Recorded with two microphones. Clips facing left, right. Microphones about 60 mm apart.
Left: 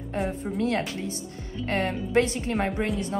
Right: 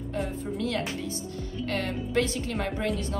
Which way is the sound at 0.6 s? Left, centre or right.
Left.